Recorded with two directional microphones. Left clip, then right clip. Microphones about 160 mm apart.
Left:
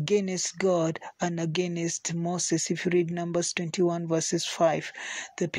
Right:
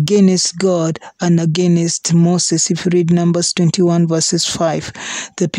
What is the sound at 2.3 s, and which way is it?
Speech, 90° right.